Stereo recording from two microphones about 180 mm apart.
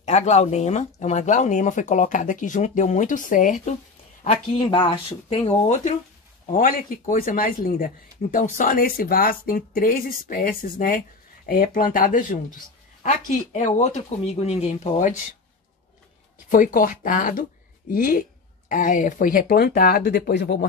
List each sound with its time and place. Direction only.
0.0 s speech: 40° left (ahead or behind)
4.2 s speech: 35° left (ahead or behind)
6.4 s speech: 50° left (ahead or behind)
16.4 s speech: 45° left (ahead or behind); by 20.5 s 65° left (ahead or behind)